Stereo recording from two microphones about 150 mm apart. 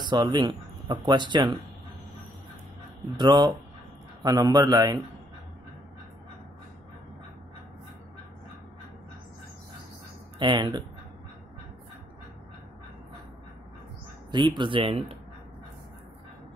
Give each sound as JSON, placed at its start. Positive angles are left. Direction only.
{"t": 0.0, "sound": "speech", "side_deg": -30}
{"t": 3.2, "sound": "a man's voice", "side_deg": -30}
{"t": 10.4, "sound": "speech", "side_deg": -30}
{"t": 14.3, "sound": "speech", "side_deg": -30}